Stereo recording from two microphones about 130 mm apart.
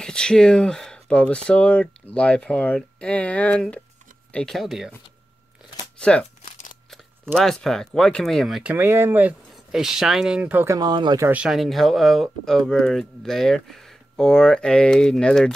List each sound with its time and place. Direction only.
0.0 s speech: 5° left (ahead or behind)
5.9 s crumpling: 10° left (ahead or behind)
7.3 s speech: 5° left (ahead or behind)
8.7 s speech: 20° right (ahead or behind)
9.7 s speech: 5° right (ahead or behind)
10.8 s speech: 35° right (ahead or behind)
11.2 s speech: 5° right (ahead or behind)